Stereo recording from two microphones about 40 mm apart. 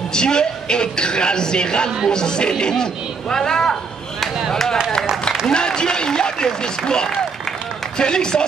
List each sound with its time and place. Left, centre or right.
0.1 s speech: centre